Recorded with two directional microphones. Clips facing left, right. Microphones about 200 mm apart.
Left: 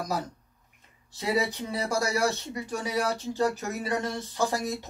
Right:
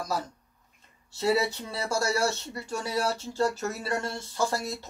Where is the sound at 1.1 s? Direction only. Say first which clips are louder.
Right 2 dB; 15° left (ahead or behind).